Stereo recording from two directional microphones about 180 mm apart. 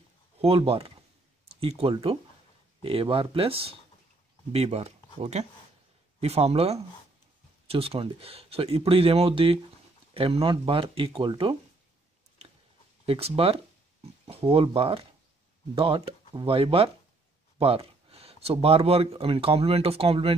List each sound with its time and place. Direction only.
0.4 s speech: 35° right (ahead or behind)
13.0 s speech: 30° right (ahead or behind)